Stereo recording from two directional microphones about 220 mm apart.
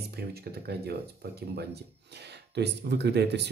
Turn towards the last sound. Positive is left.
turn(degrees=-50)  # may be behind; listen again after turning